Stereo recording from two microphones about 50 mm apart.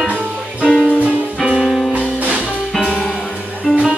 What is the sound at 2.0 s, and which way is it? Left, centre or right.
Music, right.